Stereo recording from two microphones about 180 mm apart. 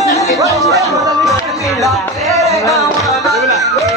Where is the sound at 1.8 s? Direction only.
Centre (ahead or behind).